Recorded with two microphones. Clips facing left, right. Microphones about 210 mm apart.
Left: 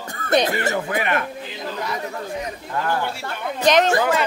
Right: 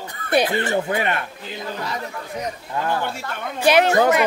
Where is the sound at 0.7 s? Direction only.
30° right (ahead or behind).